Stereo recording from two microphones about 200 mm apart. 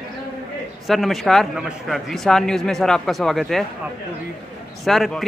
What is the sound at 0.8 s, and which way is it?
Speech, centre (ahead or behind).